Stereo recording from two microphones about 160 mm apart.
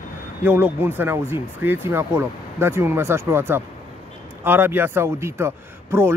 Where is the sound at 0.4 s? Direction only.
10° right (ahead or behind).